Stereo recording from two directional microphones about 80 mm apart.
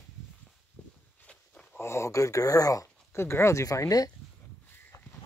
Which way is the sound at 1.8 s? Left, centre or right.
Left.